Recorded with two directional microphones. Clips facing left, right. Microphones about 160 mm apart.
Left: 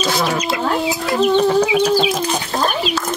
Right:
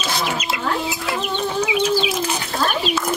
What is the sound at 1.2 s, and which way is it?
Chicken, 35° left (ahead or behind).